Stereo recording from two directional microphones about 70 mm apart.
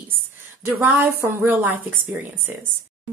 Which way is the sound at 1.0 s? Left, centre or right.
Right.